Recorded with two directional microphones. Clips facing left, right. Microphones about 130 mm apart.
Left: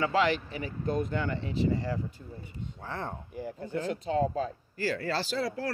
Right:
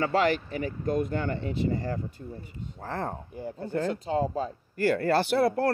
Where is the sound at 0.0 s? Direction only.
45° right (ahead or behind).